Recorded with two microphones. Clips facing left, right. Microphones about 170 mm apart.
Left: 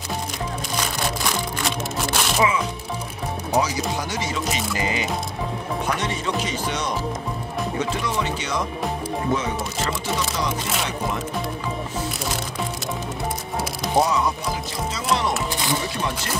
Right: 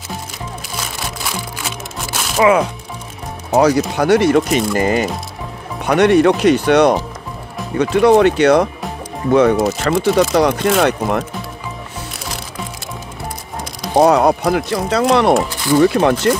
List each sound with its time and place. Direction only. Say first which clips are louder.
0.9 s music: even; 5° right (ahead or behind)
3.5 s speech: right 10 dB; 65° right (ahead or behind)
5.9 s speech: right 18 dB; 65° right (ahead or behind)
13.9 s speech: right 10 dB; 65° right (ahead or behind)